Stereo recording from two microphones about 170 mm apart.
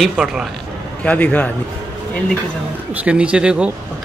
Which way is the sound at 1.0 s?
10° left (ahead or behind).